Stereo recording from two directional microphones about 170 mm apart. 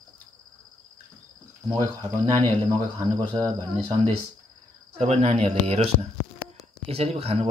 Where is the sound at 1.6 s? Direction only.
20° right (ahead or behind).